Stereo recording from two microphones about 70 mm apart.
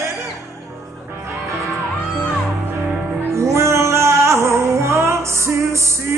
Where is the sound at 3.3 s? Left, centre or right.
Right.